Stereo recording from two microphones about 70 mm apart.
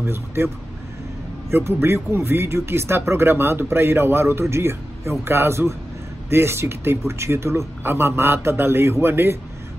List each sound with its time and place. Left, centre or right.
0.0 s speech: right
1.5 s speech: right